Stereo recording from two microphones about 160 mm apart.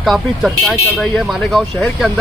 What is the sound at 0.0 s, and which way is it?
Speech, centre (ahead or behind).